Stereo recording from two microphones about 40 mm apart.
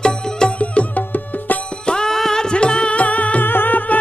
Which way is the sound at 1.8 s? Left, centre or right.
Centre.